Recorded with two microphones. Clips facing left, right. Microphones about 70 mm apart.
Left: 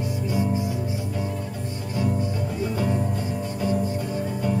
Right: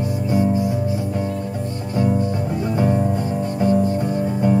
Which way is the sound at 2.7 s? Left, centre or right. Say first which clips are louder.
Right 8 dB; right.